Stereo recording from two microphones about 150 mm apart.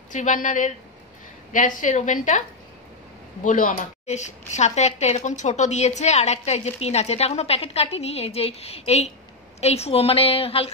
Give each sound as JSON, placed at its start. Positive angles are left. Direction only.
{"t": 0.1, "sound": "a woman's voice", "side_deg": 55}
{"t": 3.4, "sound": "a woman's voice", "side_deg": 60}